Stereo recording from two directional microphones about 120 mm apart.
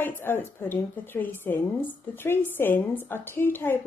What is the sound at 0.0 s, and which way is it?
A woman's voice, 15° left (ahead or behind).